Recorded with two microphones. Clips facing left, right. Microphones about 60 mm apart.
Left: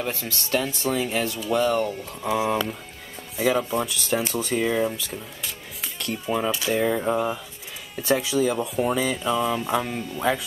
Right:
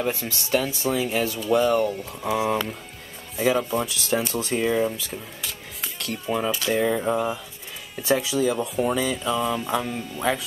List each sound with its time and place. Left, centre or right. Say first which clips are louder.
0.5 s speech: right 1 dB; centre